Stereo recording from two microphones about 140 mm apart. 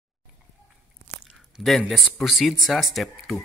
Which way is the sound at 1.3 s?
Centre (ahead or behind).